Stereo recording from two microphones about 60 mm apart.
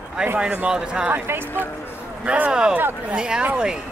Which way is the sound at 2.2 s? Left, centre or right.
Right.